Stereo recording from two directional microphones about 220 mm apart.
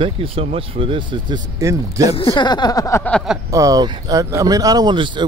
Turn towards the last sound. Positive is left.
turn(degrees=-20)  # may be behind; listen again after turning